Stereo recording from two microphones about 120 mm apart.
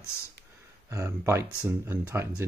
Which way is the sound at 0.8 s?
25° right (ahead or behind).